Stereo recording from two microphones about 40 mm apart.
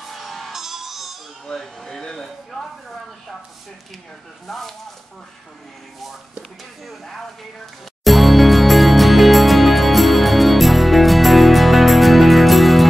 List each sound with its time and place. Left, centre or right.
0.0 s music: centre
0.5 s music: centre
1.5 s speech: centre
4.5 s speech: centre
8.0 s music: centre